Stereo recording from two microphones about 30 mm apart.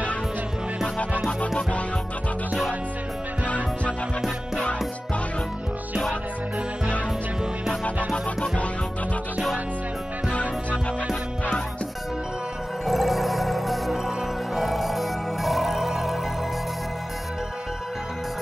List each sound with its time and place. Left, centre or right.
3.4 s music: left
10.3 s music: left
12.8 s music: centre